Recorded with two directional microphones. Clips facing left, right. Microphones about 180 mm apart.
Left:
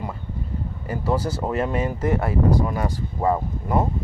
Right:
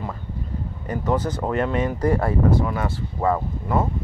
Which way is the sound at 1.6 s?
25° left (ahead or behind).